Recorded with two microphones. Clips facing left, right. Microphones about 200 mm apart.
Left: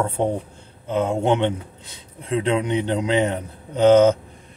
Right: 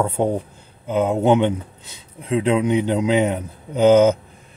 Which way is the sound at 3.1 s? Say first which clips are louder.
Right 2 dB; 10° right (ahead or behind).